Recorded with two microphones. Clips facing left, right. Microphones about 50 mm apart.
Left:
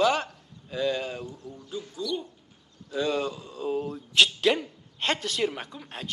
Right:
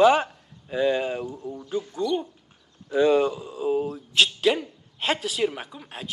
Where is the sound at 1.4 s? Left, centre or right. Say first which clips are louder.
Right 7 dB; right.